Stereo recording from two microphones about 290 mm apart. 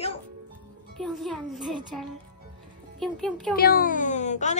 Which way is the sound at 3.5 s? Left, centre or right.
Left.